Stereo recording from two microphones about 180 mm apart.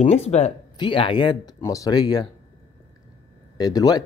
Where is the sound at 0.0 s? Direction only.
35° left (ahead or behind).